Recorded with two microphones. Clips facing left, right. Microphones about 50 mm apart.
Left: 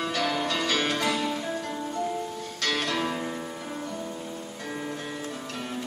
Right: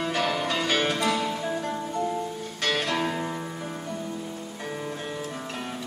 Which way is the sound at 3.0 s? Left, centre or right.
Centre.